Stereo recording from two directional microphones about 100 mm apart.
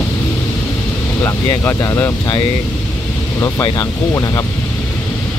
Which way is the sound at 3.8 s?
30° left (ahead or behind).